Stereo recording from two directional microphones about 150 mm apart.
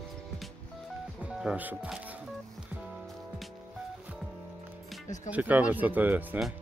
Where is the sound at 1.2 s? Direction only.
5° right (ahead or behind).